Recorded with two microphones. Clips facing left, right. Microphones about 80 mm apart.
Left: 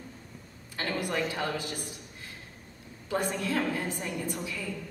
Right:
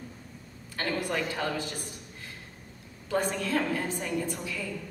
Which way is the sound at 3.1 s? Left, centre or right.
Centre.